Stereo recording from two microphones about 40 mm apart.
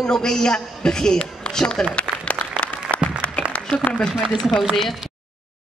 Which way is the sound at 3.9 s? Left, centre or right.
Left.